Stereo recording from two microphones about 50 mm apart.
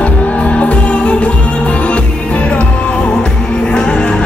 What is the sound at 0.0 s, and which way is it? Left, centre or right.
Music, left.